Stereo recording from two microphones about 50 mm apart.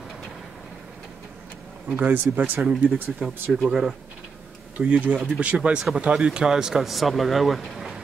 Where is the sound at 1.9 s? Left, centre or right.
Right.